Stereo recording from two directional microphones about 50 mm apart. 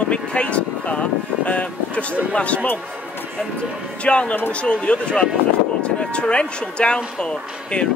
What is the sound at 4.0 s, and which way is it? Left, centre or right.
Speech, left.